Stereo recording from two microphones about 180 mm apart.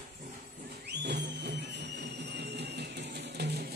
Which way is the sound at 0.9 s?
70° right (ahead or behind).